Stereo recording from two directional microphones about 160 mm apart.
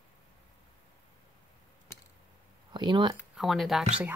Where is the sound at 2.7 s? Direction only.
30° right (ahead or behind).